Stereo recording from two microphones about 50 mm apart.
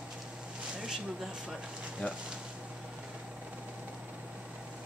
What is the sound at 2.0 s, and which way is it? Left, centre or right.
Speech, left.